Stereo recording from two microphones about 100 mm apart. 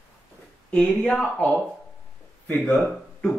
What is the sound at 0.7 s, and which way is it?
Speech, 10° left (ahead or behind).